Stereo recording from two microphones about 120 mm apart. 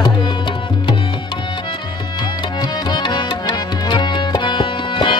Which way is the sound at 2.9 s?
40° left (ahead or behind).